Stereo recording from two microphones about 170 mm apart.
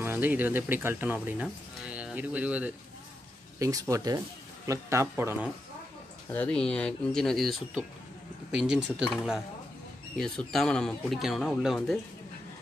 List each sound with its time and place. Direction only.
0.0 s speech: 10° right (ahead or behind)
3.5 s speech: 20° right (ahead or behind)
6.3 s speech: 5° left (ahead or behind)